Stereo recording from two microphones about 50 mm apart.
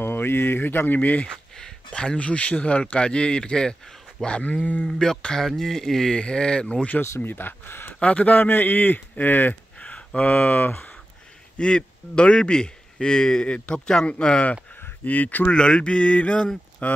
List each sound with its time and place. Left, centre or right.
0.0 s speech: left
1.2 s speech: centre
2.9 s mantra: left
4.8 s speech: centre
6.1 s mantra: centre
7.2 s speech: left
8.0 s a man's voice: left
9.8 s a sound: left
11.5 s speech: centre
15.0 s a man's voice: left
15.5 s mantra: centre
16.8 s a man's voice: left